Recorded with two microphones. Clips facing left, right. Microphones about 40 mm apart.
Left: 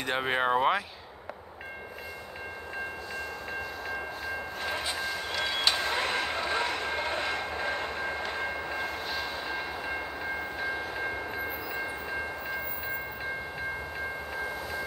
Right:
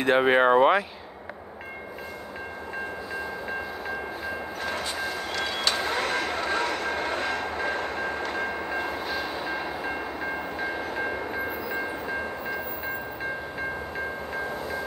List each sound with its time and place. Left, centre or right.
0.0 s speech: centre
4.8 s vehicle: centre